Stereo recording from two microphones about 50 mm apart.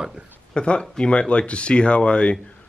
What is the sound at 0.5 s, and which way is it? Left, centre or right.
Speech, centre.